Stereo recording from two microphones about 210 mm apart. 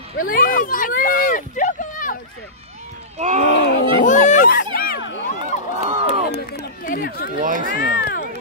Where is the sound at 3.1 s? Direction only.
35° right (ahead or behind).